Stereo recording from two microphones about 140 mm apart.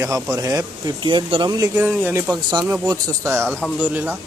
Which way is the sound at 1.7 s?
10° right (ahead or behind).